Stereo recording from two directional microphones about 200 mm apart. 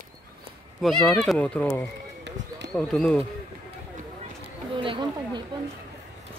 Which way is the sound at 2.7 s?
Centre (ahead or behind).